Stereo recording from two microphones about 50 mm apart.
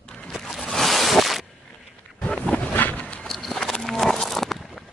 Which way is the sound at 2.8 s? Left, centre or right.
Left.